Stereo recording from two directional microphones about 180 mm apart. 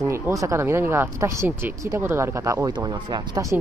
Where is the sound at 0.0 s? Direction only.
20° right (ahead or behind).